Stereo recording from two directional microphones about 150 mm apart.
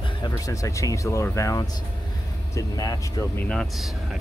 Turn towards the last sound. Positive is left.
turn(degrees=0)  # may be behind; listen again after turning